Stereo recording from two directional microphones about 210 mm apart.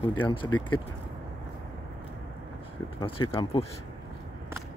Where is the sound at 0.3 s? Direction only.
20° left (ahead or behind).